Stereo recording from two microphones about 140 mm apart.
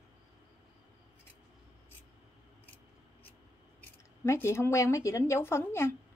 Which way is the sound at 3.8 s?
20° left (ahead or behind).